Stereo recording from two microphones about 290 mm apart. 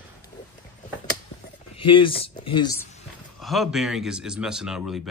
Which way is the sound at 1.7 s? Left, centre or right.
Centre.